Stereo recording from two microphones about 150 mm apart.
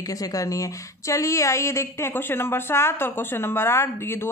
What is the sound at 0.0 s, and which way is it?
A woman's voice, 25° left (ahead or behind).